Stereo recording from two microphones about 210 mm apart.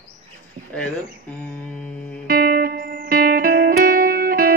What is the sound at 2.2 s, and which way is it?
Music, 45° right (ahead or behind).